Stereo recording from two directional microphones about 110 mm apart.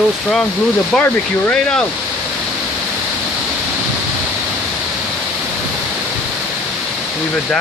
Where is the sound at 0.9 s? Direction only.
10° left (ahead or behind).